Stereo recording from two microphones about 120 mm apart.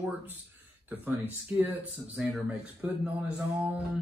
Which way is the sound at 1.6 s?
15° right (ahead or behind).